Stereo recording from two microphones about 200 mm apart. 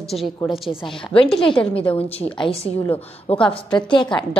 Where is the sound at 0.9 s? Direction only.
25° left (ahead or behind).